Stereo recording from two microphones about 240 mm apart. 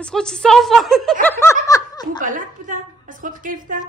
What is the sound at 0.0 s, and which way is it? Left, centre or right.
Speech, centre.